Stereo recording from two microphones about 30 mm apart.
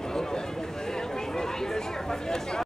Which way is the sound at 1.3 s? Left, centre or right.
Centre.